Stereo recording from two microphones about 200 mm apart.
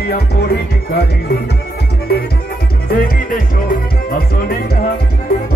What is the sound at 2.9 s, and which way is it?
Music, 45° left (ahead or behind).